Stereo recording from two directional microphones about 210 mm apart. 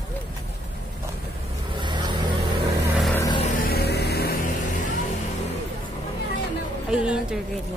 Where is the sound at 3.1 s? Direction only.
20° left (ahead or behind).